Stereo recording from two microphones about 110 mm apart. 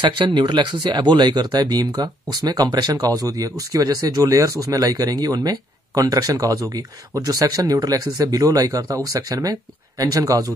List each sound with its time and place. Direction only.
0.0 s speech: 50° right (ahead or behind); by 10.5 s 30° right (ahead or behind)